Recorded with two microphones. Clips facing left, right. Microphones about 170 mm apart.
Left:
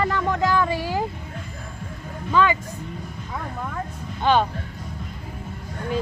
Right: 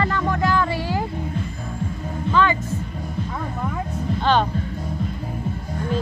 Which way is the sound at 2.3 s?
10° left (ahead or behind).